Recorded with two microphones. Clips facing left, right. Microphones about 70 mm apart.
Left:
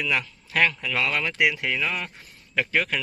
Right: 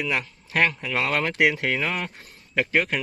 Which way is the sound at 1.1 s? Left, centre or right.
Right.